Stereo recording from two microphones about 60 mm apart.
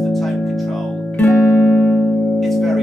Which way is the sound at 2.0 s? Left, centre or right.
Centre.